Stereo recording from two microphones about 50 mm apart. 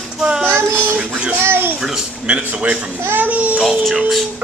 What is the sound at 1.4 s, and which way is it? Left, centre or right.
Speech, right.